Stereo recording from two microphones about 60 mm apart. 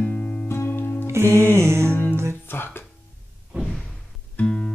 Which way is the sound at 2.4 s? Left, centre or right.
Left.